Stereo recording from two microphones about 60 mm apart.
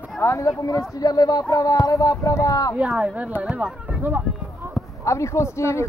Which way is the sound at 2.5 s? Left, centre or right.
Left.